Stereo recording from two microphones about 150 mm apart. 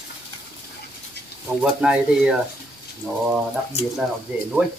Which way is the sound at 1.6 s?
5° right (ahead or behind).